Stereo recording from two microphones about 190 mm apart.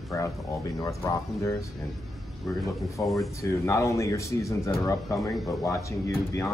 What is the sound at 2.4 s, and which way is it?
Speech, centre (ahead or behind).